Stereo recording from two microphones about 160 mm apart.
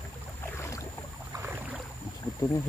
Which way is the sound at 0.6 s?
20° left (ahead or behind).